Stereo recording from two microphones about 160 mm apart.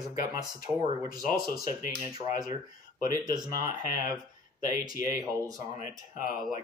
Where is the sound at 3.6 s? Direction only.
60° left (ahead or behind).